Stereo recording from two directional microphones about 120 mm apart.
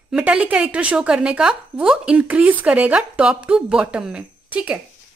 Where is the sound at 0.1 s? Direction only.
10° right (ahead or behind).